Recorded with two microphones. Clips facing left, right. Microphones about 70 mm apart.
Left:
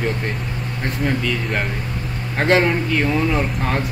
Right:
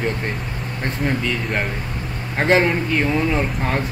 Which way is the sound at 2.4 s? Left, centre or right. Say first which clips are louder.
Even; centre.